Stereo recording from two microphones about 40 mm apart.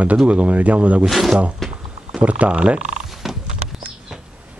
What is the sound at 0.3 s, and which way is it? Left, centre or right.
Speech, right.